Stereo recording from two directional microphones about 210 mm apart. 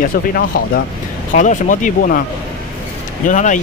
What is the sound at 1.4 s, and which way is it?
Speech, 35° left (ahead or behind).